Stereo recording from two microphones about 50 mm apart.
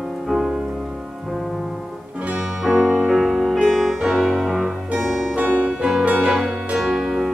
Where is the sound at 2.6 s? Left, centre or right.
Centre.